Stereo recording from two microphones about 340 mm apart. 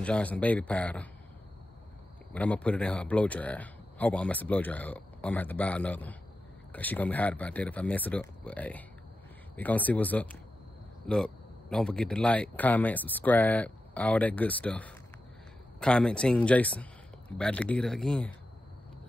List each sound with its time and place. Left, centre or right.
0.0 s speech: centre
2.3 s speech: centre